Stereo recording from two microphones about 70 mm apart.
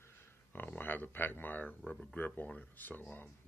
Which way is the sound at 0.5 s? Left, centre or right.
Left.